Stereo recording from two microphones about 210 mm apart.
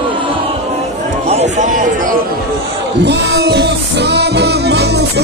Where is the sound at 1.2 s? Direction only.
30° right (ahead or behind).